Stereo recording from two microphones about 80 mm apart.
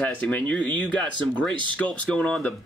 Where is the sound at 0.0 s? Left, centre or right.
Centre.